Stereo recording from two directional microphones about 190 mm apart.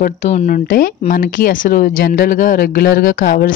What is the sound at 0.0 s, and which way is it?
Speech, 40° left (ahead or behind).